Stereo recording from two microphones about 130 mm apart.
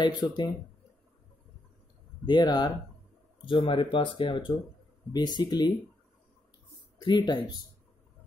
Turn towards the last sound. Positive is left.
turn(degrees=35)  # may be behind; listen again after turning